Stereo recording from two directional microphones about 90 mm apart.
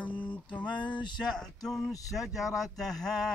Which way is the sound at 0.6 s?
60° left (ahead or behind).